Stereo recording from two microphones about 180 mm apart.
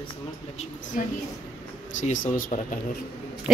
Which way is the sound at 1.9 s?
45° left (ahead or behind).